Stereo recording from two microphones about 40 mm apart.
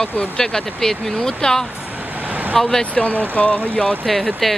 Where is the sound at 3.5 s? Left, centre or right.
Left.